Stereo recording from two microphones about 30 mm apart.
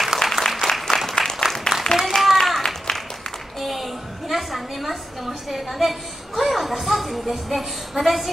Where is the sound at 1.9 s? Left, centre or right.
Left.